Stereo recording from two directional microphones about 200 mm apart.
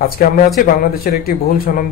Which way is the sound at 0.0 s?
45° left (ahead or behind).